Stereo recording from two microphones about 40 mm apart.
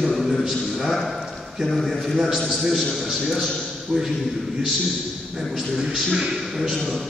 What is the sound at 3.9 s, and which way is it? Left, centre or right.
Speech, centre.